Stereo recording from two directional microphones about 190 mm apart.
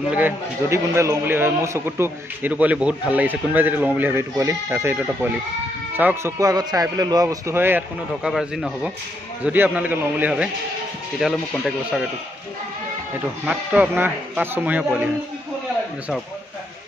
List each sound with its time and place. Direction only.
0.1 s a man's voice: 10° right (ahead or behind)
13.5 s a man's voice: 5° right (ahead or behind)